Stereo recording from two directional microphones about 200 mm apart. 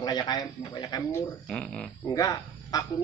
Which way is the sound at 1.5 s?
5° left (ahead or behind).